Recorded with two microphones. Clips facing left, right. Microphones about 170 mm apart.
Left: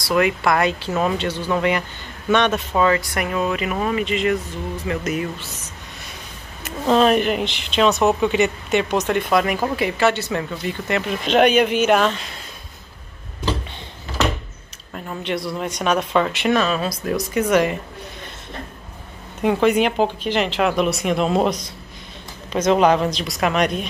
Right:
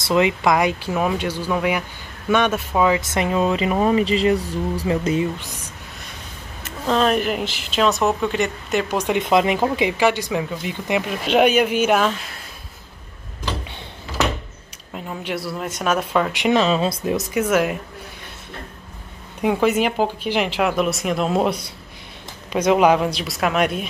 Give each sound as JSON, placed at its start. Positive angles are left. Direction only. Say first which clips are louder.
{"t": 0.1, "sound": "speech", "louder": "right 1 dB", "side_deg": -20}
{"t": 3.0, "sound": "speech", "louder": "right 3 dB", "side_deg": -25}
{"t": 5.4, "sound": "speech", "louder": "even", "side_deg": -10}
{"t": 6.9, "sound": "speech", "louder": "left 3 dB", "side_deg": 5}
{"t": 8.9, "sound": "speech", "louder": "right 3 dB", "side_deg": -15}
{"t": 15.0, "sound": "speech", "louder": "left 2 dB", "side_deg": -10}
{"t": 17.3, "sound": "speech", "louder": "left 2 dB", "side_deg": -5}
{"t": 19.4, "sound": "speech", "louder": "left 1 dB", "side_deg": -5}